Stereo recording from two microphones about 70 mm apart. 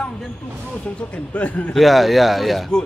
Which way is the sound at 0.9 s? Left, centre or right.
Centre.